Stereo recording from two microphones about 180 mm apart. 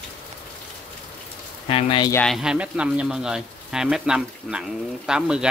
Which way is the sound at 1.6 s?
30° left (ahead or behind).